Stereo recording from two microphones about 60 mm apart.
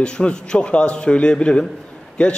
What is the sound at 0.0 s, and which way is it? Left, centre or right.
A man's voice, centre.